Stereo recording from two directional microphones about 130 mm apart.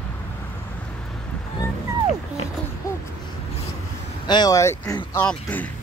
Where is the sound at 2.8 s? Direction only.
25° left (ahead or behind).